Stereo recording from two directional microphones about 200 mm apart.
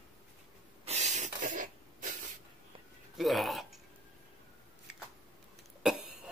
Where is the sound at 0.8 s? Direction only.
35° right (ahead or behind).